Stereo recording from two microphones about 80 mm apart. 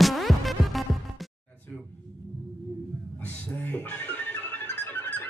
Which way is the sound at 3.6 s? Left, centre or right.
Left.